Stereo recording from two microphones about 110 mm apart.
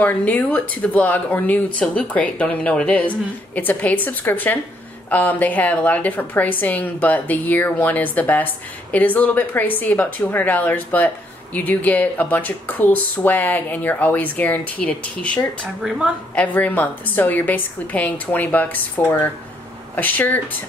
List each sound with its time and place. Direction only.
0.0 s speech: 15° left (ahead or behind)